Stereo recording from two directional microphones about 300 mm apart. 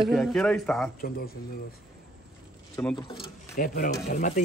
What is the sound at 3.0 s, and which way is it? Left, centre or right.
Speech, centre.